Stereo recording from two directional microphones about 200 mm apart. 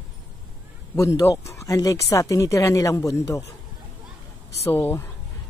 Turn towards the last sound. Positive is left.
turn(degrees=10)  # may be behind; listen again after turning